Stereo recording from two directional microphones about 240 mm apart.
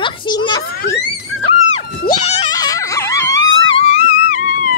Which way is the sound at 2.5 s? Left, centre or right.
Centre.